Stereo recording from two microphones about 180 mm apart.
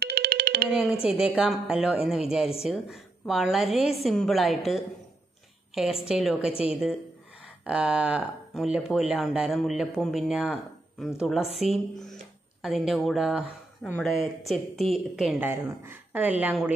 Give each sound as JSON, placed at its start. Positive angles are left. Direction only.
{"t": 0.0, "sound": "music", "side_deg": -60}
{"t": 1.0, "sound": "speech", "side_deg": -5}
{"t": 6.0, "sound": "speech", "side_deg": 0}
{"t": 12.6, "sound": "speech", "side_deg": 0}
{"t": 15.5, "sound": "speech", "side_deg": -15}